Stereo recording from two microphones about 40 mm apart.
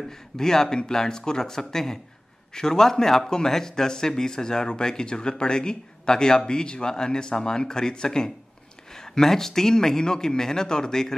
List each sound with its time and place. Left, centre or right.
0.4 s a man's voice: centre